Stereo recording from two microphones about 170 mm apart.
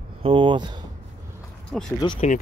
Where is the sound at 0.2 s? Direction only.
30° right (ahead or behind).